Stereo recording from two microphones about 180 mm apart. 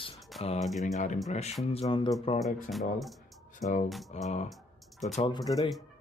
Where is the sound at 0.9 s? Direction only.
45° left (ahead or behind).